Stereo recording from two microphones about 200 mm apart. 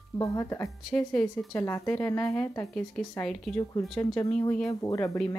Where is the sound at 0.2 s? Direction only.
15° left (ahead or behind).